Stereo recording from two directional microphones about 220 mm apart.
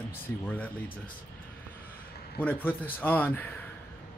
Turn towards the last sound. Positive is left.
turn(degrees=10)  # may be behind; listen again after turning